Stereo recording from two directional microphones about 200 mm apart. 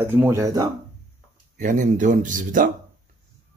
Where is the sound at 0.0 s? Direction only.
10° right (ahead or behind).